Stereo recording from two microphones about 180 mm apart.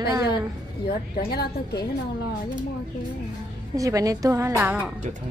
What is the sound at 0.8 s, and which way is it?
A woman's voice, 60° left (ahead or behind).